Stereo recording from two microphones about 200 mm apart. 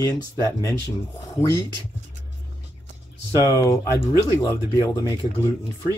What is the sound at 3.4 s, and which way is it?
Speech, 15° left (ahead or behind).